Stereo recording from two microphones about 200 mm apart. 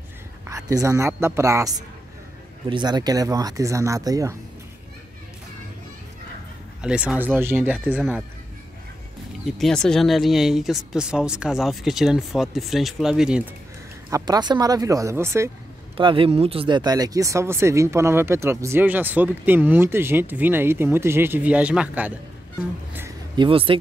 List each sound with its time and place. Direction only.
0.5 s speech: 15° right (ahead or behind)
6.8 s speech: 5° right (ahead or behind)
9.6 s speech: 5° left (ahead or behind)
14.1 s speech: 20° right (ahead or behind)
16.0 s speech: 25° right (ahead or behind); by 22.2 s 10° right (ahead or behind)
22.9 s a sound: 20° right (ahead or behind)